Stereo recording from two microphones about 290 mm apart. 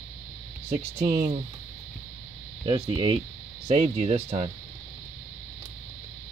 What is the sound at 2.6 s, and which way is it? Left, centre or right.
Speech, centre.